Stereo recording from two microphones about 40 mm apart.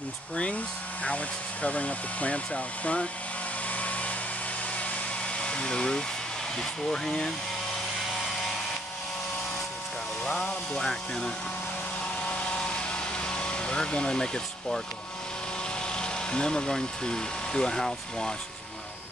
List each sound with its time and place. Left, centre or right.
1.0 s speech: left
3.6 s a sound: left
5.4 s speech: left
10.4 s speech: centre
12.3 s vehicle: left
15.9 s speech: left